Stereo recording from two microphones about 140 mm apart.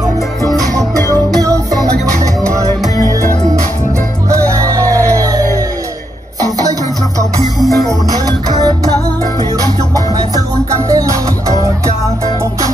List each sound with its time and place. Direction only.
1.1 s music: 25° right (ahead or behind)
4.3 s music: 20° right (ahead or behind)
7.5 s music: centre (ahead or behind)
8.3 s music: 30° right (ahead or behind)
10.9 s music: 25° right (ahead or behind)